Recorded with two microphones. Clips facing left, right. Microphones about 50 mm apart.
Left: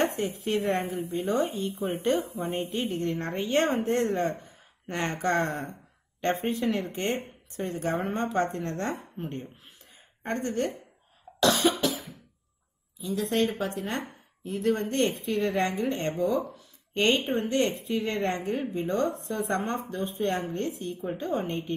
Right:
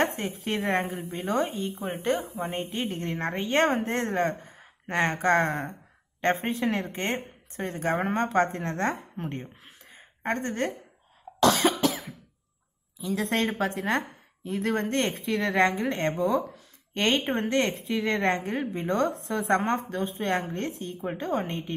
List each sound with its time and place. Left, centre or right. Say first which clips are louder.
0.0 s a woman's voice: even; right
11.3 s cough: right 1 dB; right
13.0 s a woman's voice: even; right
13.7 s a woman's voice: right 4 dB; right
15.4 s a woman's voice: right 4 dB; right
16.9 s a woman's voice: left 1 dB; right
17.3 s a woman's voice: right 1 dB; right
17.6 s a woman's voice: even; right